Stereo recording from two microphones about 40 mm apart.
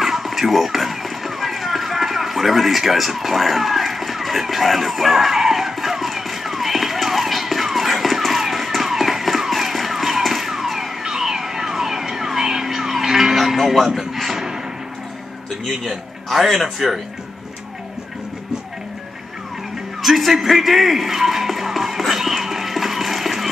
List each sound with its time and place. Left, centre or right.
0.0 s a sound: centre
15.6 s a man's voice: centre
20.0 s music: centre